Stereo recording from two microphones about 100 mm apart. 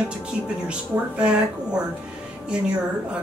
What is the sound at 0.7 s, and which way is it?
Speech, 10° right (ahead or behind).